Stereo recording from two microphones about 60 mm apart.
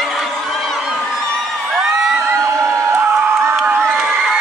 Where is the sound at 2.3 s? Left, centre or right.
Right.